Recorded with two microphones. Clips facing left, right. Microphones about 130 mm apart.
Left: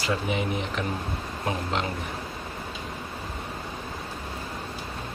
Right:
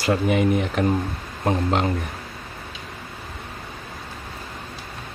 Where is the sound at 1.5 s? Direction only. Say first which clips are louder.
Right 7 dB; 40° right (ahead or behind).